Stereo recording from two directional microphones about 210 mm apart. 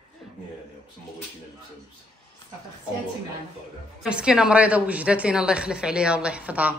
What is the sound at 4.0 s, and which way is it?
A woman's voice, 5° right (ahead or behind).